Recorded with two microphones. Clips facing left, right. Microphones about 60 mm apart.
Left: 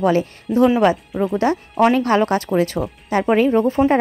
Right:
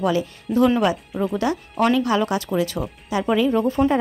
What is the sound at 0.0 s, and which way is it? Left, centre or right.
Speech, left.